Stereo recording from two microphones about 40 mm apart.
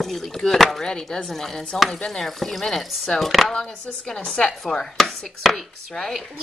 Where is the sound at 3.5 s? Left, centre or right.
Centre.